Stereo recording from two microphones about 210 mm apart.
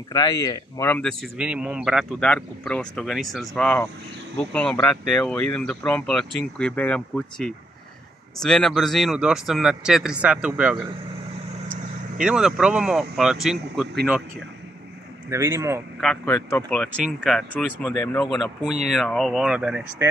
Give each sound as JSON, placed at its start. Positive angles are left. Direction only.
{"t": 0.1, "sound": "a man's voice", "side_deg": 15}
{"t": 12.2, "sound": "a man's voice", "side_deg": -5}
{"t": 15.2, "sound": "speech", "side_deg": -10}
{"t": 16.0, "sound": "a man's voice", "side_deg": 5}
{"t": 17.9, "sound": "speech", "side_deg": 15}
{"t": 18.9, "sound": "a man's voice", "side_deg": 0}